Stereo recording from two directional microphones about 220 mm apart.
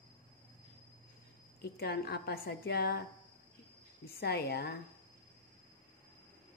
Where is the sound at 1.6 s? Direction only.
45° left (ahead or behind).